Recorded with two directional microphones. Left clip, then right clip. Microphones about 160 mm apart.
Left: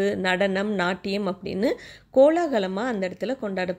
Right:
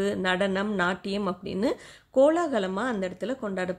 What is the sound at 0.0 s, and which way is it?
Speech, 10° left (ahead or behind).